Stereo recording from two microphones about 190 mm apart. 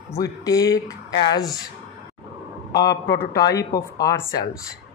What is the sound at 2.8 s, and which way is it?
Speech, 20° left (ahead or behind).